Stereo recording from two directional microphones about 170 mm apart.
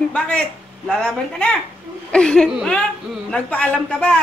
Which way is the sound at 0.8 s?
5° left (ahead or behind).